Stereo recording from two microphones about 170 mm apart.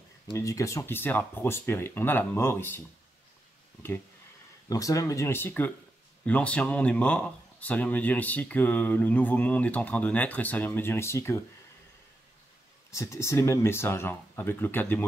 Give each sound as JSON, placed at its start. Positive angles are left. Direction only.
{"t": 0.3, "sound": "speech", "side_deg": 20}
{"t": 4.6, "sound": "speech", "side_deg": 20}
{"t": 12.9, "sound": "speech", "side_deg": 15}